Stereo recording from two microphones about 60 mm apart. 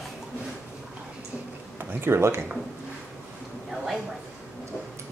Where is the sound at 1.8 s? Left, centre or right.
Right.